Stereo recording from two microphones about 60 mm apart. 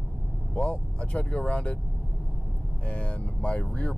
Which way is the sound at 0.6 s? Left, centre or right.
Centre.